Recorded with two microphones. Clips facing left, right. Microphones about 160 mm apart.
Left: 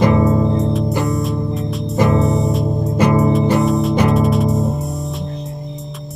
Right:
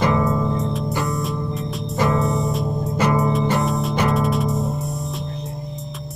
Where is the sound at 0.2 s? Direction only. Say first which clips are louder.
Left 5 dB; 20° left (ahead or behind).